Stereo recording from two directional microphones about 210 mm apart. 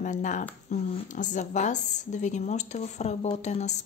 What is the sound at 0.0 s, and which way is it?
A woman's voice, 35° left (ahead or behind).